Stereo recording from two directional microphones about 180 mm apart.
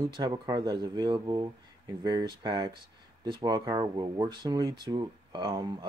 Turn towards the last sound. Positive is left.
turn(degrees=-25)  # may be behind; listen again after turning